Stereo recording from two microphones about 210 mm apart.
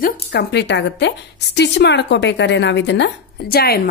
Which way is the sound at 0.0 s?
45° left (ahead or behind).